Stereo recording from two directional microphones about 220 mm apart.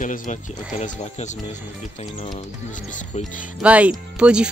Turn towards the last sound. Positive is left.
turn(degrees=-5)  # may be behind; listen again after turning